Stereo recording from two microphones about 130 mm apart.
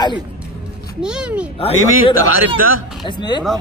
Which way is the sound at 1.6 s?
50° left (ahead or behind).